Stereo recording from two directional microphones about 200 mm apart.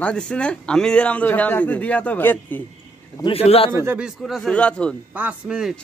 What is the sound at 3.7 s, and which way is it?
Speech, 10° right (ahead or behind).